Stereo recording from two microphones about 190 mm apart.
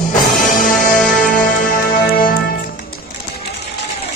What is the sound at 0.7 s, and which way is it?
Music, centre (ahead or behind).